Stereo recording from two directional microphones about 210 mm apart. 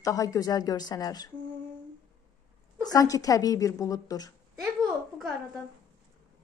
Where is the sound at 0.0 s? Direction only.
15° left (ahead or behind).